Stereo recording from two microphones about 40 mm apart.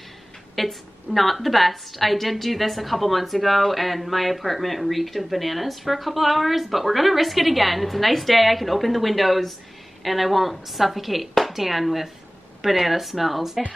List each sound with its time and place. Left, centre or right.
0.6 s a woman's voice: centre